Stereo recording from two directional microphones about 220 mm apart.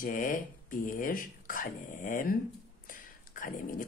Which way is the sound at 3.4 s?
35° left (ahead or behind).